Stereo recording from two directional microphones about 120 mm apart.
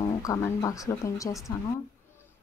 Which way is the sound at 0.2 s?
30° left (ahead or behind).